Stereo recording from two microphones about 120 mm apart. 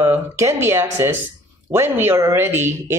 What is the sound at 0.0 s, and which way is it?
Speech, 25° right (ahead or behind).